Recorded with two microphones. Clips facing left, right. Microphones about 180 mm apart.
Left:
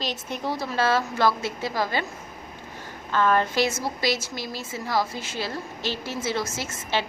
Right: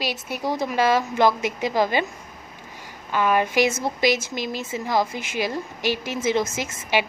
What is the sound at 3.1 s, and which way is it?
Speech, 10° right (ahead or behind).